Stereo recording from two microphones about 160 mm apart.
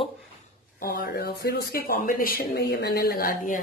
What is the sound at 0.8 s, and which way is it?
Speech, 75° left (ahead or behind).